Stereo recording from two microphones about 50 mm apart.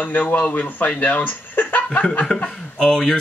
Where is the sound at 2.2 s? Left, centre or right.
Centre.